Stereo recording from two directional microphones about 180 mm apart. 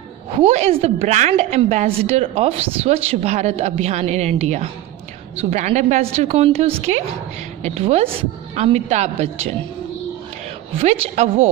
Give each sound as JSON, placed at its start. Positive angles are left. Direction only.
{"t": 0.3, "sound": "a woman's voice", "side_deg": -35}
{"t": 10.8, "sound": "a woman's voice", "side_deg": -40}